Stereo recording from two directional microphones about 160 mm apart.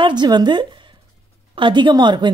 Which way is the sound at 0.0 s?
25° right (ahead or behind).